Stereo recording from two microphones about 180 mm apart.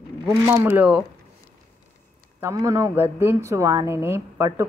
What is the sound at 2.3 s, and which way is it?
Speech, 15° right (ahead or behind).